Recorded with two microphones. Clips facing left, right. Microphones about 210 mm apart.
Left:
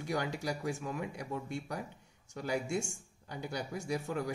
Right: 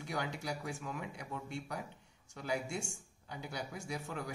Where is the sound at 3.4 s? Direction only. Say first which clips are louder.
Left 6 dB; 40° left (ahead or behind).